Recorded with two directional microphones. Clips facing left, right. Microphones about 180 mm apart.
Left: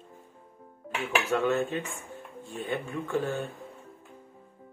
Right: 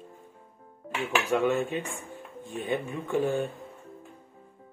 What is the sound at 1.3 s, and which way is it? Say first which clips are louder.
Speech: right 1 dB; 15° right (ahead or behind).